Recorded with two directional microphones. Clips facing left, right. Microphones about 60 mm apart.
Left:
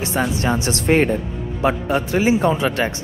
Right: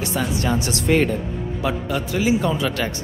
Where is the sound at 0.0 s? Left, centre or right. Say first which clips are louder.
Left 2 dB; left.